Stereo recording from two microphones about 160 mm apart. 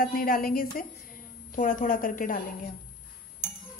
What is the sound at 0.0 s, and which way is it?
A woman's voice, 65° left (ahead or behind).